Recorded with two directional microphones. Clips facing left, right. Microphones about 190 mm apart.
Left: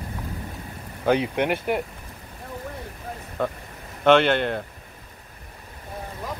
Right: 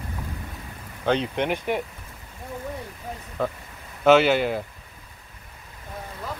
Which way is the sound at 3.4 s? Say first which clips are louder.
Left 1 dB; centre (ahead or behind).